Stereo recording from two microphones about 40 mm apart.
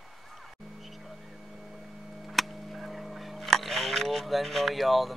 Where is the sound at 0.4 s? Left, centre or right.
Centre.